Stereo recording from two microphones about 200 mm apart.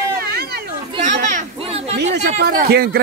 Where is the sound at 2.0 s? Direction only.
50° right (ahead or behind).